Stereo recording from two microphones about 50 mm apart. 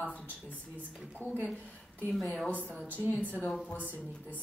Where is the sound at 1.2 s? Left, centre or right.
Left.